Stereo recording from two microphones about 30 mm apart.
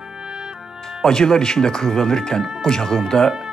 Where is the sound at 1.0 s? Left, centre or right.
Centre.